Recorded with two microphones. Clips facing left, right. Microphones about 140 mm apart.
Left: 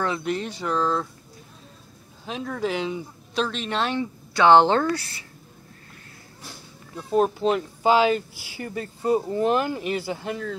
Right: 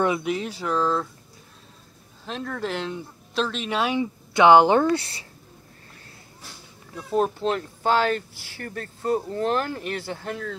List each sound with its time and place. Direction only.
0.2 s speech: 5° right (ahead or behind)
2.2 s speech: 5° left (ahead or behind)
4.3 s speech: 20° right (ahead or behind)
7.0 s speech: centre (ahead or behind)